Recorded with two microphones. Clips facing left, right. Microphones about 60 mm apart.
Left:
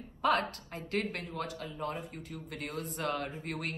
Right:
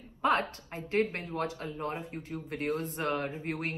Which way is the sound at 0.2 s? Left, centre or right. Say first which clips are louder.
Right 1 dB; right.